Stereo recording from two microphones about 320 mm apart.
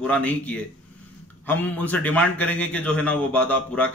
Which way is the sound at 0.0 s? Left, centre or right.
Centre.